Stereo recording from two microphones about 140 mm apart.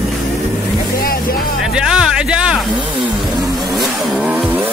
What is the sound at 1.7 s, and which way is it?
Speech, 5° right (ahead or behind).